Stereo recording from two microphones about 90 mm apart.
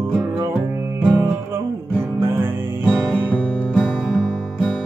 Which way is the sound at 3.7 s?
10° right (ahead or behind).